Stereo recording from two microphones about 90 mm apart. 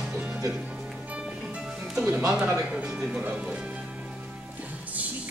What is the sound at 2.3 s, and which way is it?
Speech, 10° right (ahead or behind).